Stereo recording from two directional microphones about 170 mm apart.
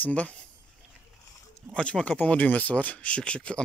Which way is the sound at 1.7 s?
5° left (ahead or behind).